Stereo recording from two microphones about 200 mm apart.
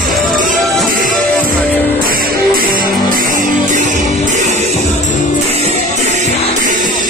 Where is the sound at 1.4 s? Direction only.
10° left (ahead or behind).